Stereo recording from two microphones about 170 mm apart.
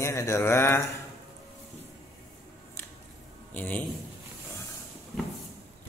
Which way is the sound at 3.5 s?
10° left (ahead or behind).